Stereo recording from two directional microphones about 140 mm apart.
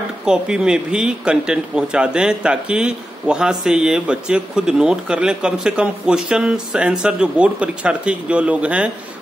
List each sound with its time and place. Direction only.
0.2 s a man's voice: 5° right (ahead or behind)